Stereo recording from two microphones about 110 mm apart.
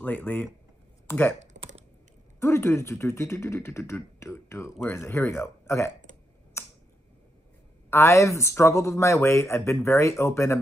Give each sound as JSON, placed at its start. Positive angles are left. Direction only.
{"t": 0.0, "sound": "speech", "side_deg": 15}
{"t": 1.5, "sound": "typing", "side_deg": -90}
{"t": 2.4, "sound": "speech", "side_deg": 25}
{"t": 6.6, "sound": "a sound", "side_deg": 25}
{"t": 7.9, "sound": "speech", "side_deg": 25}